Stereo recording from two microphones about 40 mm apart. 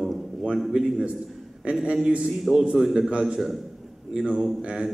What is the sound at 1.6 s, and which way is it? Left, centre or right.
Speech, right.